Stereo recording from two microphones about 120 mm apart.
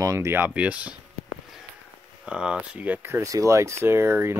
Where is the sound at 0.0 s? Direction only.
25° right (ahead or behind).